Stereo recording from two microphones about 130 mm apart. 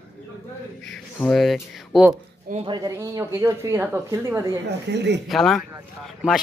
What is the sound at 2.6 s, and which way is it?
Speech, 25° right (ahead or behind).